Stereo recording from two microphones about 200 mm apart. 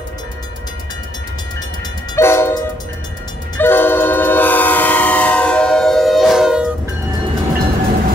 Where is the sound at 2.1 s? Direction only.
10° left (ahead or behind).